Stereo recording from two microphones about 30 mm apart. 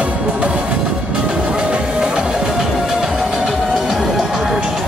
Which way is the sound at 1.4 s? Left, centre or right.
Right.